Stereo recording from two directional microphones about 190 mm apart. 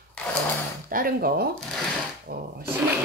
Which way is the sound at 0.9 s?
50° right (ahead or behind).